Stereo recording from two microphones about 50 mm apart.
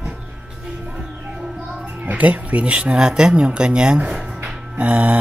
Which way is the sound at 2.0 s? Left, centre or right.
Right.